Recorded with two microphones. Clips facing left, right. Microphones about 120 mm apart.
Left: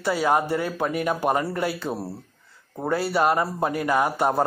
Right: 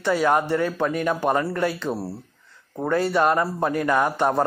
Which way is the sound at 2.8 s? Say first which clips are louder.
Right 2 dB; 10° left (ahead or behind).